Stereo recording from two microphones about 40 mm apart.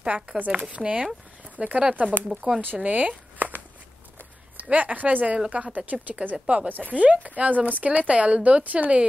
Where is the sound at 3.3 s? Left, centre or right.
Right.